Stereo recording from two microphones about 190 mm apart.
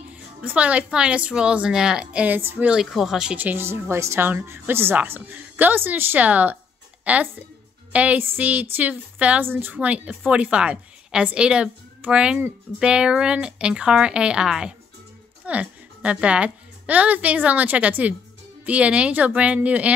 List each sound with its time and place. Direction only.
0.1 s a woman's voice: 5° right (ahead or behind)